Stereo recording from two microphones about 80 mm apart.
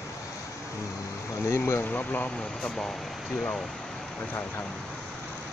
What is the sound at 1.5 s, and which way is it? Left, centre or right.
Speech, left.